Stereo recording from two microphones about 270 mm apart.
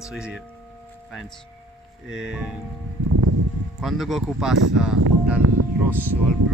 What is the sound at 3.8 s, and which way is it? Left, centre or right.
Speech, centre.